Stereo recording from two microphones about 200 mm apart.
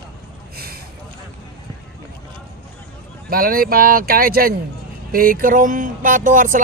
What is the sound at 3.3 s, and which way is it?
Speech, 45° right (ahead or behind).